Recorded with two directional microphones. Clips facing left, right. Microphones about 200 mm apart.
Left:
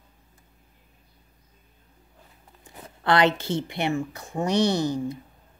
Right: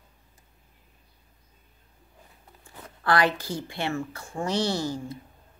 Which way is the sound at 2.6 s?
20° left (ahead or behind).